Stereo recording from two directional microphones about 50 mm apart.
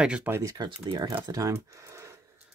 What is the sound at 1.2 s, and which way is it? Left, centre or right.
Speech, right.